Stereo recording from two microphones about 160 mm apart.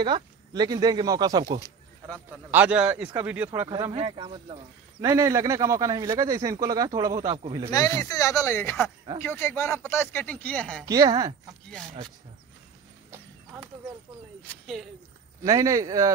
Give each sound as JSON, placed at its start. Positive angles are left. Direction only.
{"t": 0.0, "sound": "a man's voice", "side_deg": -25}
{"t": 2.5, "sound": "a man's voice", "side_deg": -10}
{"t": 3.6, "sound": "a man's voice", "side_deg": -25}
{"t": 5.0, "sound": "a man's voice", "side_deg": -20}
{"t": 7.7, "sound": "speech", "side_deg": 20}
{"t": 10.9, "sound": "a man's voice", "side_deg": -25}
{"t": 13.1, "sound": "a sound", "side_deg": -10}
{"t": 15.4, "sound": "a man's voice", "side_deg": -20}